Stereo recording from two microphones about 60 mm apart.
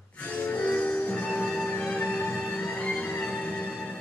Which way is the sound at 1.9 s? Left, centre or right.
Left.